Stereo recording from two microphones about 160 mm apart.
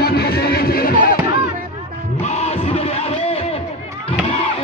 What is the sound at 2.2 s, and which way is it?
Music, 40° left (ahead or behind).